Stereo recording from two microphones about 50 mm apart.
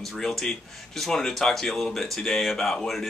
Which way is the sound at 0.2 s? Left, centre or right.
Centre.